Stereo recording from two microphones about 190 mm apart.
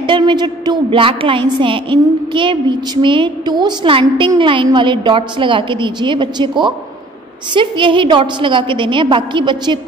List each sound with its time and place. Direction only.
0.0 s a woman's voice: 25° right (ahead or behind)